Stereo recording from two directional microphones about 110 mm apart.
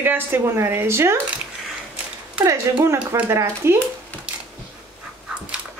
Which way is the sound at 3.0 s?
15° right (ahead or behind).